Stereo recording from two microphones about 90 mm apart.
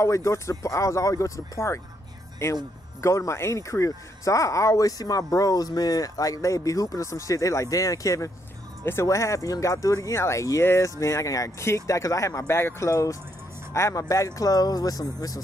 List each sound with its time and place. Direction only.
0.0 s speech: 35° left (ahead or behind)